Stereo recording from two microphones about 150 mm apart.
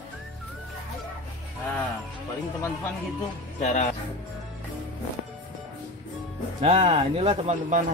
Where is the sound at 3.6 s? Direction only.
50° left (ahead or behind).